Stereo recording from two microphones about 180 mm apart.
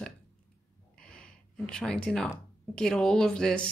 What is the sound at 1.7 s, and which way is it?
Speech, 5° left (ahead or behind).